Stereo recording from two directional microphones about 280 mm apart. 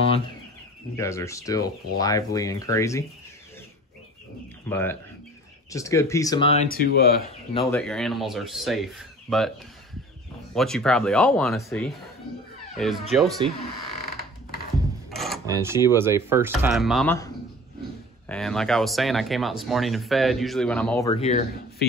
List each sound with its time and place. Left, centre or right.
0.9 s speech: centre
4.6 s speech: centre
6.7 s speech: left
7.6 s speech: centre
10.5 s speech: centre
15.0 s a sound: centre
15.4 s speech: centre
18.3 s speech: centre
21.1 s speech: left